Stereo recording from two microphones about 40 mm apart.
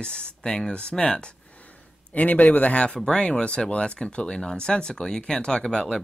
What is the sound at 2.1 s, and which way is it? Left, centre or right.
Speech, left.